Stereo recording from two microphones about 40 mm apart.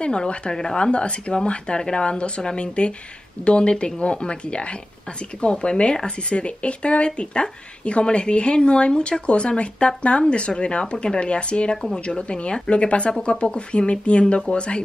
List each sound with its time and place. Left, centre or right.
0.0 s speech: left